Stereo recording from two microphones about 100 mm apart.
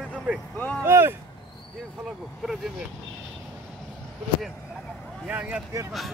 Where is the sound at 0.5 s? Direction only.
15° left (ahead or behind).